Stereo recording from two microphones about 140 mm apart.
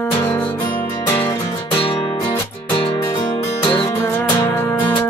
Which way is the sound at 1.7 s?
40° left (ahead or behind).